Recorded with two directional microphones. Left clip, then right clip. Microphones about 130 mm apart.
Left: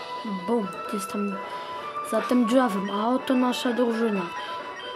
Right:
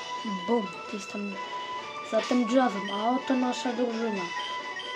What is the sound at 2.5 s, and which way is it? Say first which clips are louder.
Speech: left 3 dB; 70° left (ahead or behind).